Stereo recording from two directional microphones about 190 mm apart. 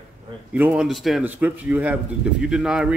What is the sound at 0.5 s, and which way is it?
A man's voice, 10° right (ahead or behind).